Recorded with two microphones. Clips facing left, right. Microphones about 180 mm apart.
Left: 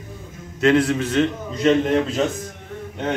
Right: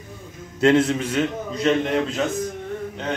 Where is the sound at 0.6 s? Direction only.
25° right (ahead or behind).